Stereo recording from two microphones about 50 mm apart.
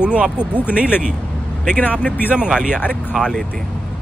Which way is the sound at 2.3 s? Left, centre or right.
Centre.